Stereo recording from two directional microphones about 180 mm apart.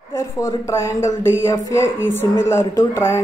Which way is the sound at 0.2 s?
15° left (ahead or behind).